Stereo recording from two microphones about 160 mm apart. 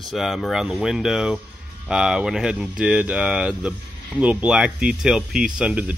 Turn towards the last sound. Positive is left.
turn(degrees=-5)  # may be behind; listen again after turning